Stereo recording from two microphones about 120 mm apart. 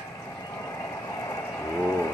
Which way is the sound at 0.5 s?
25° left (ahead or behind).